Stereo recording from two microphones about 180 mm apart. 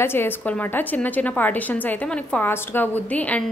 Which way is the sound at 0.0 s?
10° left (ahead or behind).